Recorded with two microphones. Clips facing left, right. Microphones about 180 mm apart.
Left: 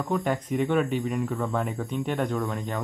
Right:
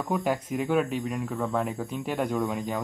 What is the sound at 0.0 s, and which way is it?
A man's voice, 5° right (ahead or behind).